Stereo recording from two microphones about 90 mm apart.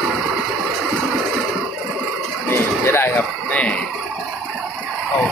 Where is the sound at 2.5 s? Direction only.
25° left (ahead or behind).